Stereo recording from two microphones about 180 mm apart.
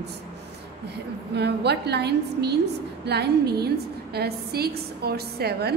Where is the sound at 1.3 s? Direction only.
70° right (ahead or behind).